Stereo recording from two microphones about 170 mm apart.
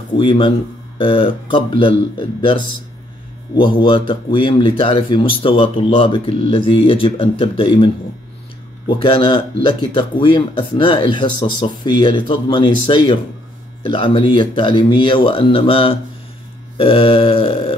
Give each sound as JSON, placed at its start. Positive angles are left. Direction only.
{"t": 0.2, "sound": "a man's voice", "side_deg": 30}